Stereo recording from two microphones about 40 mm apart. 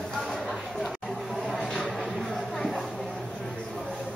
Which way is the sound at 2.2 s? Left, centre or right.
Centre.